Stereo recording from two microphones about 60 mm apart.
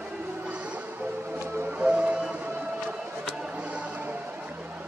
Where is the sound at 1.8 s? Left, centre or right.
Right.